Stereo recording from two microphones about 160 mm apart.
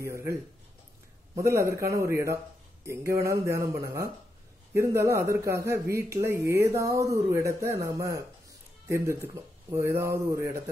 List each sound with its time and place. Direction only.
0.0 s speech: 20° right (ahead or behind)